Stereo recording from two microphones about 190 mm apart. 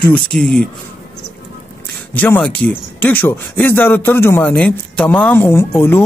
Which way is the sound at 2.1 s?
10° left (ahead or behind).